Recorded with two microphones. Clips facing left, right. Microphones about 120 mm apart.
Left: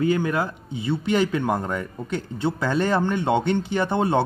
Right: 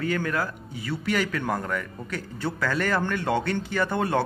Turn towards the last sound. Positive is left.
turn(degrees=20)  # may be behind; listen again after turning